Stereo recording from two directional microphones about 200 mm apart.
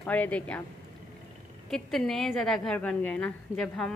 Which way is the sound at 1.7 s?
Centre (ahead or behind).